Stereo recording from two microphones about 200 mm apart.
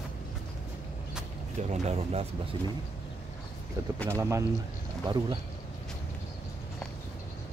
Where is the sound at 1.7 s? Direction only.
35° right (ahead or behind).